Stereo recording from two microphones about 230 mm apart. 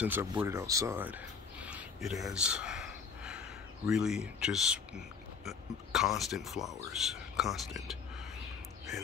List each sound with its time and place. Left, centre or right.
0.0 s speech: centre